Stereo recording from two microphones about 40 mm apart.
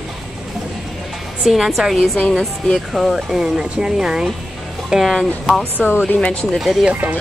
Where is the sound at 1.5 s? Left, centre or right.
Centre.